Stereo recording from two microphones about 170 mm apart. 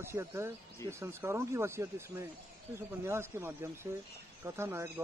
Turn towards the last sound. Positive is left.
turn(degrees=-10)  # may be behind; listen again after turning